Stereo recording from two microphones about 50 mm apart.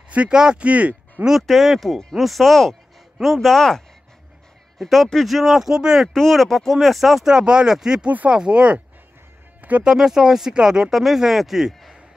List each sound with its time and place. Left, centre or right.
0.3 s speech: centre
1.2 s speech: centre
6.1 s speech: centre; by 8.8 s right
9.6 s music: right
9.8 s speech: centre